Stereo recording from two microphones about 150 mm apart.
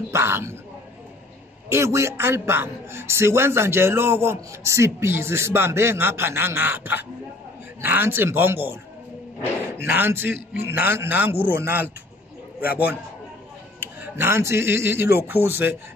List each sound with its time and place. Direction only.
0.1 s speech: 15° right (ahead or behind)
1.7 s a man's voice: 20° right (ahead or behind)
9.8 s a man's voice: 15° right (ahead or behind)
13.7 s a man's voice: 15° right (ahead or behind)